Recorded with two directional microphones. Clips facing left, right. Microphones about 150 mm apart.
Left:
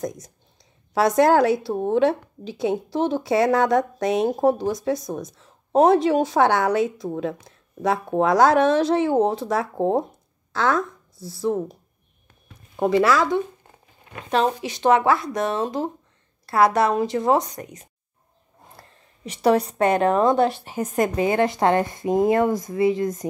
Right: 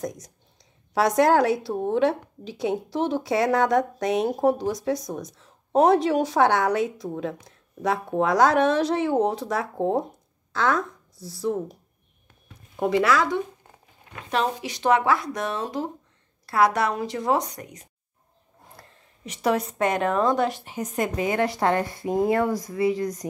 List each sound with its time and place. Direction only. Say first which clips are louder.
1.1 s a woman's voice: left 2 dB; 30° left (ahead or behind)
13.0 s a woman's voice: left 3 dB; 30° left (ahead or behind)
19.2 s a woman's voice: left 5 dB; 30° left (ahead or behind)
20.7 s speech: left 5 dB; 50° left (ahead or behind)
21.2 s speech: left 3 dB; 30° left (ahead or behind)